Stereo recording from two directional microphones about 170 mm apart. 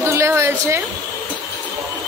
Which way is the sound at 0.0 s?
15° right (ahead or behind).